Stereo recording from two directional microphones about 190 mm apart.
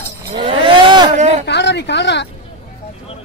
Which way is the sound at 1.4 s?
65° left (ahead or behind).